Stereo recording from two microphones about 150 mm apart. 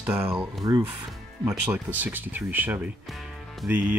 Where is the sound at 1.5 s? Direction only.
10° right (ahead or behind).